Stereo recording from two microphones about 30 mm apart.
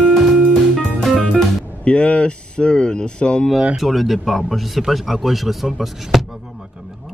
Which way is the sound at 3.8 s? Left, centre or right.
Centre.